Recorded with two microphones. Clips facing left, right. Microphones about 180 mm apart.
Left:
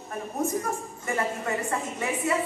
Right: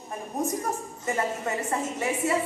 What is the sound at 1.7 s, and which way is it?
Speech, 25° right (ahead or behind).